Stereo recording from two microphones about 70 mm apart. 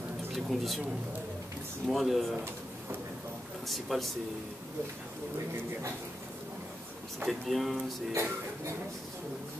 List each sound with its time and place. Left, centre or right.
0.3 s speech: centre
1.9 s speech: centre
3.6 s speech: centre
7.2 s speech: centre
8.1 s speech: right